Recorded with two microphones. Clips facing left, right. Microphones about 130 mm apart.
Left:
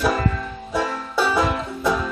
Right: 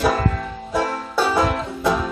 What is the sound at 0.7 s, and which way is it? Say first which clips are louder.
Music: right 1 dB; 5° right (ahead or behind).